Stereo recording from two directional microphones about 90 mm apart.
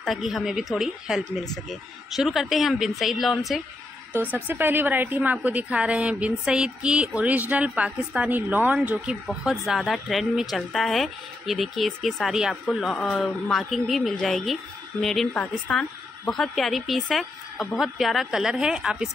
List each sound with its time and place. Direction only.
0.0 s speech: centre (ahead or behind)
4.1 s a woman's voice: 20° right (ahead or behind)
8.9 s speech: 5° right (ahead or behind)